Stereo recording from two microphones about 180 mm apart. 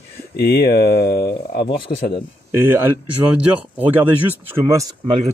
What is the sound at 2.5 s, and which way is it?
Speech, 10° right (ahead or behind).